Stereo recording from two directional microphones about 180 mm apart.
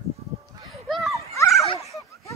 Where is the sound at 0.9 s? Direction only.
Centre (ahead or behind).